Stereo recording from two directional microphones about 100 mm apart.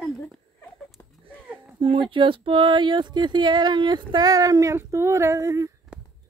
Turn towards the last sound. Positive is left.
turn(degrees=-35)  # may be behind; listen again after turning